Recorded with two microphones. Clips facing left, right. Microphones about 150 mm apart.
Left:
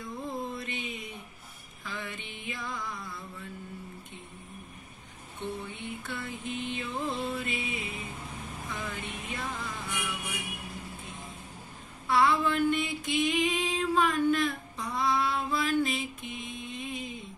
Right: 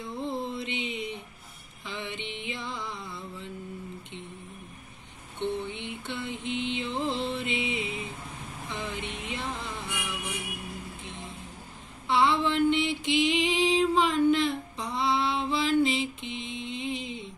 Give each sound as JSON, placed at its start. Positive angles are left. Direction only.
{"t": 0.0, "sound": "a sound", "side_deg": -25}
{"t": 1.9, "sound": "music", "side_deg": -25}
{"t": 2.1, "sound": "music", "side_deg": -70}
{"t": 2.4, "sound": "music", "side_deg": -25}
{"t": 5.4, "sound": "music", "side_deg": -25}
{"t": 6.0, "sound": "mantra", "side_deg": -25}
{"t": 6.3, "sound": "mantra", "side_deg": -75}
{"t": 6.8, "sound": "music", "side_deg": -25}
{"t": 8.6, "sound": "vehicle", "side_deg": -25}
{"t": 9.0, "sound": "music", "side_deg": -80}
{"t": 9.3, "sound": "a sound", "side_deg": -25}
{"t": 12.1, "sound": "a sound", "side_deg": -25}
{"t": 13.1, "sound": "female singing", "side_deg": -25}
{"t": 16.4, "sound": "mantra", "side_deg": -75}